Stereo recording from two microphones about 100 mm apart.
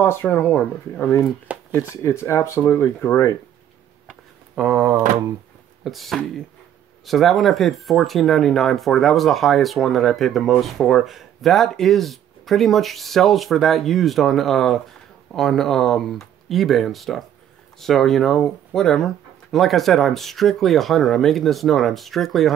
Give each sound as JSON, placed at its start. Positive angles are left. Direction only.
{"t": 0.0, "sound": "speech", "side_deg": 25}
{"t": 1.5, "sound": "shuffling cards", "side_deg": -15}
{"t": 2.0, "sound": "speech", "side_deg": 30}
{"t": 2.7, "sound": "speech", "side_deg": 20}
{"t": 4.6, "sound": "a sound", "side_deg": -20}
{"t": 5.9, "sound": "speech", "side_deg": 0}